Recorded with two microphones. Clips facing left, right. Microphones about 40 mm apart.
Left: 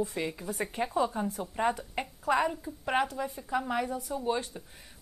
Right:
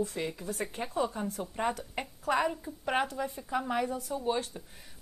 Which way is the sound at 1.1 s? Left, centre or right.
Centre.